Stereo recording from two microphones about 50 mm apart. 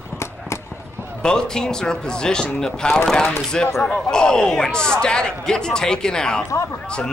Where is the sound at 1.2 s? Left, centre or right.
Centre.